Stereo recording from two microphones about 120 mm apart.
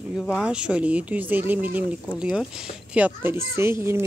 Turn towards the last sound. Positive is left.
turn(degrees=-20)  # may be behind; listen again after turning